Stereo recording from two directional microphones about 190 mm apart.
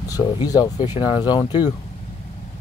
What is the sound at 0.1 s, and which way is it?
Speech, 20° left (ahead or behind).